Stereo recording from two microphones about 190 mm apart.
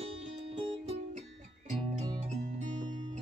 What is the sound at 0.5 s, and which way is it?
Music, 30° right (ahead or behind).